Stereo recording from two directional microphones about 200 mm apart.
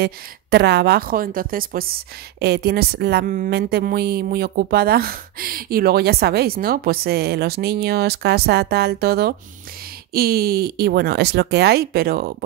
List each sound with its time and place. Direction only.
0.0 s a woman's voice: 55° right (ahead or behind)